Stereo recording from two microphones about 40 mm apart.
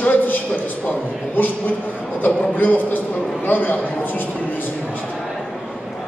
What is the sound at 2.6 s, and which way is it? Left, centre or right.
A man's voice, left.